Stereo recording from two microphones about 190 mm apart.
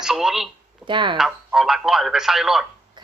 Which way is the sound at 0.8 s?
25° right (ahead or behind).